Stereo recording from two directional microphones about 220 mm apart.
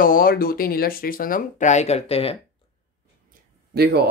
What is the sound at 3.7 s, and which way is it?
Speech, 45° right (ahead or behind).